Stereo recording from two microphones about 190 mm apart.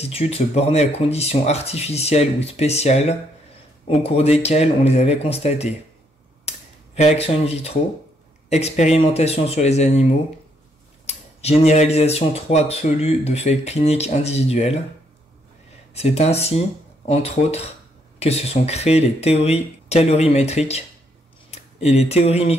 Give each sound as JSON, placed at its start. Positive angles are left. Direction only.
{"t": 0.0, "sound": "speech", "side_deg": 30}
{"t": 7.0, "sound": "speech", "side_deg": 35}
{"t": 15.9, "sound": "speech", "side_deg": 35}